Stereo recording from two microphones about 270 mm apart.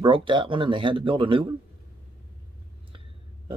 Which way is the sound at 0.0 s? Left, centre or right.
Centre.